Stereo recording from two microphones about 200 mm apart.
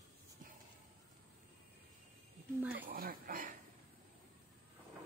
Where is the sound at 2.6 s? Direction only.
10° right (ahead or behind).